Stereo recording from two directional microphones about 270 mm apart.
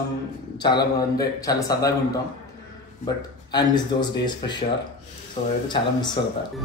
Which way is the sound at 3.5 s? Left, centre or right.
Centre.